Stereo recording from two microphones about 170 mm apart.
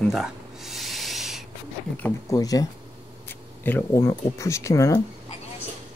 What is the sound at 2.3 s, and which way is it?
Speech, 20° left (ahead or behind).